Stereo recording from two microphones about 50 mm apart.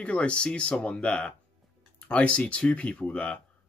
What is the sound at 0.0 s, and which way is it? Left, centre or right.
Speech, left.